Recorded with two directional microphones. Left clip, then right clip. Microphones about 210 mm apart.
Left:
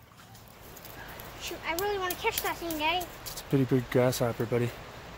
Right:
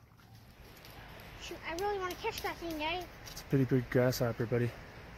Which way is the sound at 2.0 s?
25° right (ahead or behind).